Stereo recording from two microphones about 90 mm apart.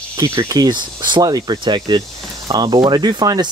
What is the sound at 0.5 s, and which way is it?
Speech, 50° right (ahead or behind).